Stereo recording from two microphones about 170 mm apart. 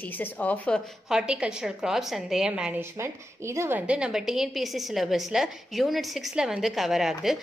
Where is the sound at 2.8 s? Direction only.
15° right (ahead or behind).